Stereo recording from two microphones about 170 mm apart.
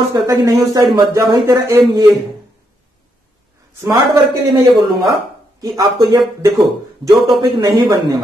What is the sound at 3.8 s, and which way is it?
A man's voice, 15° right (ahead or behind).